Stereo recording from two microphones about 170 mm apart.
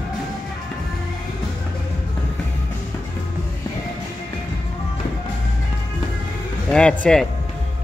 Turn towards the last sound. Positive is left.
turn(degrees=5)  # may be behind; listen again after turning